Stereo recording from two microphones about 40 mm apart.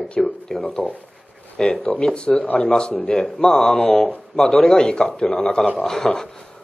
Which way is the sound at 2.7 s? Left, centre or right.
Left.